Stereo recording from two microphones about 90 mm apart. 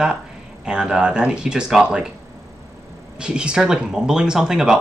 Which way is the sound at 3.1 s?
10° right (ahead or behind).